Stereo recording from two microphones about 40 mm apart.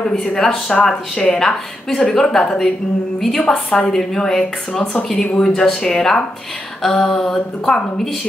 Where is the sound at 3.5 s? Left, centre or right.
Centre.